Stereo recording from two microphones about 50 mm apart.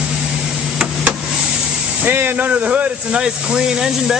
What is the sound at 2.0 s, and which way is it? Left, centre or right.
Speech, right.